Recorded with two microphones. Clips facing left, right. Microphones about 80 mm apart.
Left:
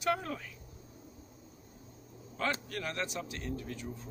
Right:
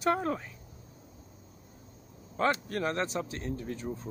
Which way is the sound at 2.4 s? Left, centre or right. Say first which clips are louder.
Right 6 dB; right.